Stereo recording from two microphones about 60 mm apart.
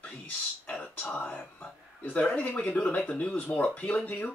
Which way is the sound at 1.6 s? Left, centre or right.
Left.